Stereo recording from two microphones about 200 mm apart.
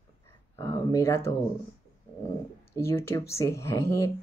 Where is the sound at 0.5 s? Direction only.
15° left (ahead or behind).